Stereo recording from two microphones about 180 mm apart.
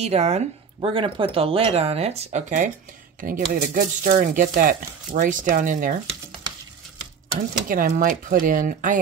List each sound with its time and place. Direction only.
0.0 s speech: 35° right (ahead or behind)
7.3 s speech: 50° right (ahead or behind)